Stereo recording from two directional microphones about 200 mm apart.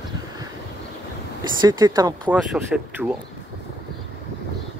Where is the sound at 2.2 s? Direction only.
5° right (ahead or behind).